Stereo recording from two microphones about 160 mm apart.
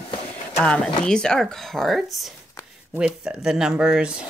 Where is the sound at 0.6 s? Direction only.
5° left (ahead or behind).